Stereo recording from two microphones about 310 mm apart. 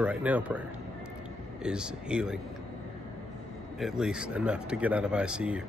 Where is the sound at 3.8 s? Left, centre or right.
Centre.